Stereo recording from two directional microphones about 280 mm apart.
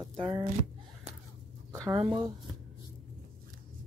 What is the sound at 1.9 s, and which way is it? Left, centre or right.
Speech, centre.